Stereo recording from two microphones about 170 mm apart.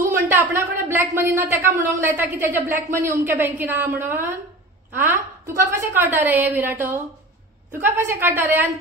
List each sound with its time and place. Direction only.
0.1 s a woman's voice: 15° right (ahead or behind)
7.8 s a woman's voice: 15° right (ahead or behind)